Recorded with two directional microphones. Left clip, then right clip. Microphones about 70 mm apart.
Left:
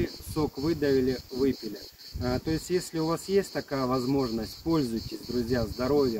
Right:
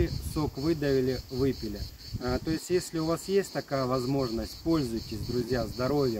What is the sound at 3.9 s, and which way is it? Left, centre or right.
Speech, right.